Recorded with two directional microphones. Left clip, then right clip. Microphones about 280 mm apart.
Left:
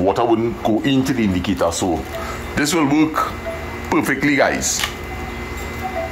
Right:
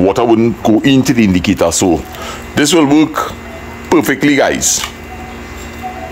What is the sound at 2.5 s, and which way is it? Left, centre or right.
Speech, right.